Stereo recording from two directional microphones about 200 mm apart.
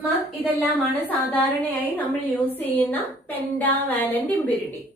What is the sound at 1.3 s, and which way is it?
A woman's voice, 10° left (ahead or behind).